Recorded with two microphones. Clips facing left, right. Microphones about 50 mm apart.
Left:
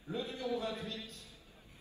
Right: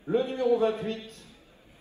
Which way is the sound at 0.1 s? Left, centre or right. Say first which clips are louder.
Right 13 dB; right.